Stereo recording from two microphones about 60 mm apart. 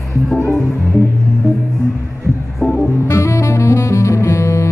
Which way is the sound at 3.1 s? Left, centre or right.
Left.